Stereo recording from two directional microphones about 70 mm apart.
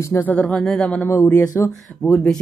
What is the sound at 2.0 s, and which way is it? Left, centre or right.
Speech, centre.